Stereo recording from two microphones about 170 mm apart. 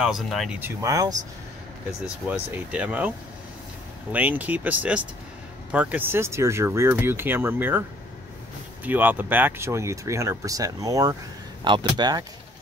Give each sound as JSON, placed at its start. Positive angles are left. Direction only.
{"t": 0.0, "sound": "speech", "side_deg": 0}
{"t": 0.6, "sound": "speech", "side_deg": -15}
{"t": 2.2, "sound": "speech", "side_deg": -10}
{"t": 4.1, "sound": "speech", "side_deg": -10}
{"t": 8.8, "sound": "speech", "side_deg": -10}